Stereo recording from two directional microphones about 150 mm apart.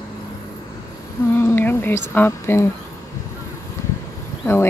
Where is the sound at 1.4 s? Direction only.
15° left (ahead or behind).